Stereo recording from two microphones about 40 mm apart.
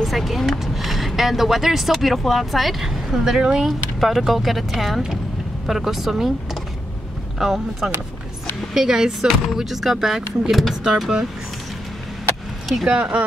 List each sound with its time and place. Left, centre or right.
0.0 s speech: centre
2.8 s speech: centre
3.6 s speech: centre
10.5 s speech: centre
10.8 s speech: centre
12.8 s speech: right